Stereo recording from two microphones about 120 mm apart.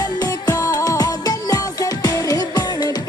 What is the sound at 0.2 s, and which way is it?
Music, 25° left (ahead or behind).